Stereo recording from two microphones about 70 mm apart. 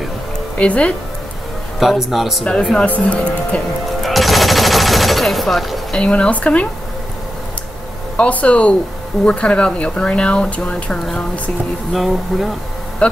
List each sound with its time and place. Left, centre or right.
0.6 s speech: centre
1.8 s speech: centre
2.8 s speech: centre
4.0 s machine gun: centre
5.9 s speech: centre
8.2 s speech: left
11.9 s speech: centre
13.0 s speech: centre